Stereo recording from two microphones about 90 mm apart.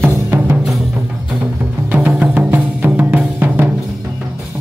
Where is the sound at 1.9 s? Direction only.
15° right (ahead or behind).